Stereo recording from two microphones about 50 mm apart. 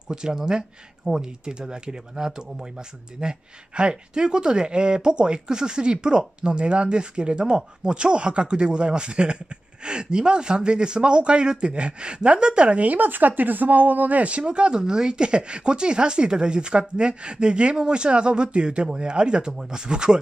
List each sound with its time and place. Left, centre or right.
0.1 s speech: centre